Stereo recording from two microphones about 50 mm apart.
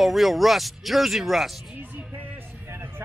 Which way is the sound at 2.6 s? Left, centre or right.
Right.